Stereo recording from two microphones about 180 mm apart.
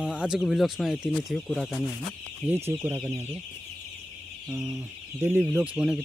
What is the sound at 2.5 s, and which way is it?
Speech, 15° right (ahead or behind).